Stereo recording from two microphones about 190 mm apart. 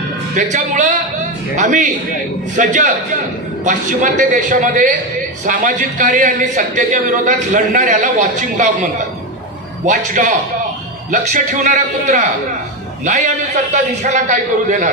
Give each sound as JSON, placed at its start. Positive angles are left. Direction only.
{"t": 0.4, "sound": "a man's voice", "side_deg": -40}
{"t": 9.8, "sound": "a man's voice", "side_deg": -40}